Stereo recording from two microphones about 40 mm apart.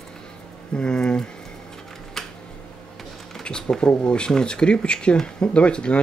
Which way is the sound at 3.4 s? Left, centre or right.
Centre.